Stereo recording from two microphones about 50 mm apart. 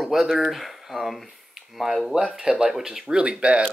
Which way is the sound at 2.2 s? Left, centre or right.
Centre.